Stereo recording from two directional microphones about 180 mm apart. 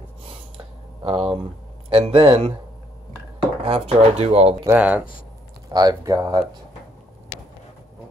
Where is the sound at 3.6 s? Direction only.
30° right (ahead or behind).